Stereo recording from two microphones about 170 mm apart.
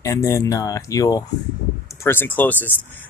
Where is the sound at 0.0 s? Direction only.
20° left (ahead or behind).